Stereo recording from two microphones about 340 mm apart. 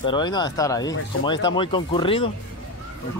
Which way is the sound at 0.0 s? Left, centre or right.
Centre.